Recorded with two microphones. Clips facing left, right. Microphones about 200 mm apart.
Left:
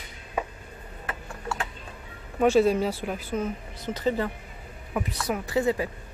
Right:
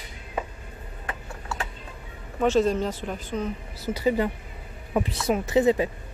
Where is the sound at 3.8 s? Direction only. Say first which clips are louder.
Right 3 dB; 10° right (ahead or behind).